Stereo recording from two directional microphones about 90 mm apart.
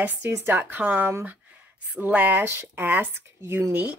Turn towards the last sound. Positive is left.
turn(degrees=-20)  # may be behind; listen again after turning